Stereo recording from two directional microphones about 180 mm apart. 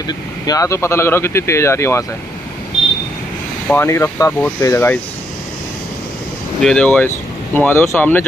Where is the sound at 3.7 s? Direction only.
15° left (ahead or behind).